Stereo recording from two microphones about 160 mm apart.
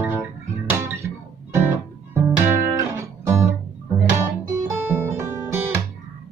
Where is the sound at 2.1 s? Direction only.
15° right (ahead or behind).